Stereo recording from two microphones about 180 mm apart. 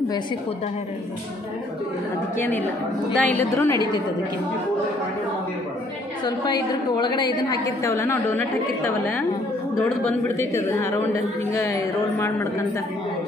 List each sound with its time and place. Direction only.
2.3 s a woman's voice: 10° left (ahead or behind)
3.5 s a woman's voice: 20° left (ahead or behind)
6.2 s a woman's voice: 25° left (ahead or behind)
10.2 s a woman's voice: 15° left (ahead or behind)